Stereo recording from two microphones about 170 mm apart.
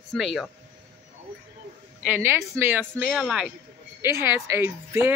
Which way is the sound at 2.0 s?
15° right (ahead or behind).